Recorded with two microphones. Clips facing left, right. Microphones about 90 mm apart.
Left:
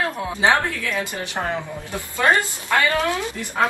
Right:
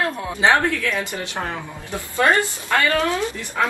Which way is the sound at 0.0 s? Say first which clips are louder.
Right 1 dB; 20° left (ahead or behind).